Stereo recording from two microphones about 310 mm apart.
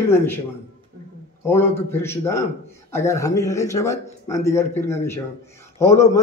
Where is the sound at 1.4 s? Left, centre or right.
Centre.